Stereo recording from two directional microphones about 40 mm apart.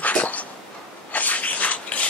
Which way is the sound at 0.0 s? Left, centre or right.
Left.